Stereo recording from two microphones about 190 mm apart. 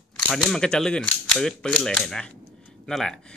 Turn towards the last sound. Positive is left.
turn(degrees=5)  # may be behind; listen again after turning